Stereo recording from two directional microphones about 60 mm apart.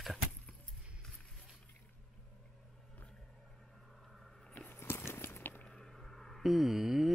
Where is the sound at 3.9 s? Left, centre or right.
Centre.